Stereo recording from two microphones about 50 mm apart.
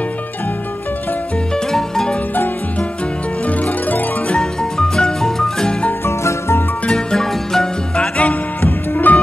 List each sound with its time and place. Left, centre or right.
1.5 s music: centre
3.4 s music: left
4.3 s music: centre
6.0 s music: left
6.9 s music: centre
8.6 s music: left